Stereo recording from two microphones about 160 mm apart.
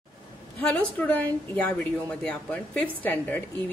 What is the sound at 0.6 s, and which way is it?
A woman's voice, 5° left (ahead or behind).